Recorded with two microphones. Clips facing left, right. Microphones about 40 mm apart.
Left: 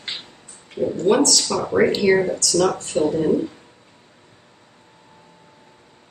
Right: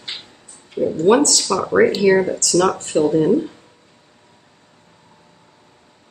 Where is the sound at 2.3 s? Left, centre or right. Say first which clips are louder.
Right 2 dB; right.